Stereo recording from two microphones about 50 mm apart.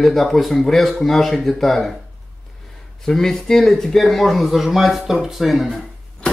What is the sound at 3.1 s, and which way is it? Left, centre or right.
Speech, centre.